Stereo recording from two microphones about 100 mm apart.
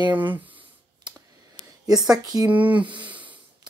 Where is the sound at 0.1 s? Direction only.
20° right (ahead or behind).